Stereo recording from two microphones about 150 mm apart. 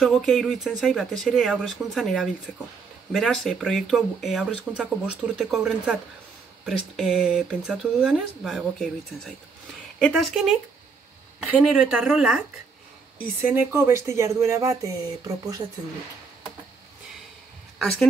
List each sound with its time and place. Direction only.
0.0 s speech: centre (ahead or behind); by 15.6 s 25° right (ahead or behind)